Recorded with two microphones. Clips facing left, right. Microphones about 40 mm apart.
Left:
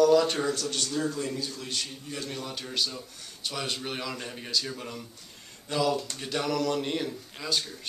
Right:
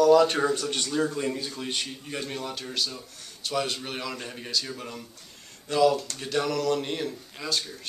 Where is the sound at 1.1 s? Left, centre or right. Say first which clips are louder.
Right 3 dB; right.